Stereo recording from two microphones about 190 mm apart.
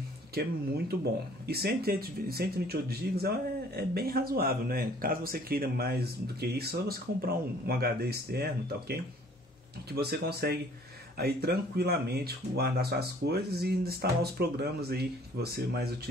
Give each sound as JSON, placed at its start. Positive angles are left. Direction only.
{"t": 0.3, "sound": "speech", "side_deg": -55}